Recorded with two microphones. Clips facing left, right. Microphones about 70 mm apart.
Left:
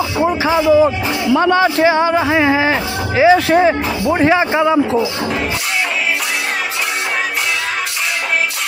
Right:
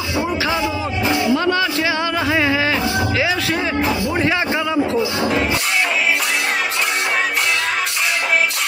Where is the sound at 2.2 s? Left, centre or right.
Centre.